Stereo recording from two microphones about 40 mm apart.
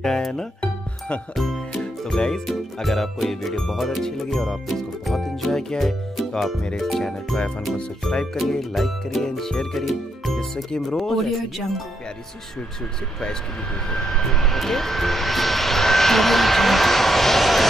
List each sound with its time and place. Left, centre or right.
0.0 s music: centre
0.6 s music: left
1.3 s speech: centre
2.1 s music: centre
2.5 s speech: centre
5.8 s music: centre
6.8 s speech: centre
8.0 s music: centre
8.5 s speech: centre
9.3 s music: centre
9.8 s speech: centre
13.8 s speech: centre